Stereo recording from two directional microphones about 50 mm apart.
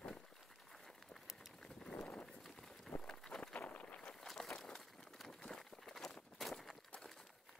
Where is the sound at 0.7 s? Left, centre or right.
Centre.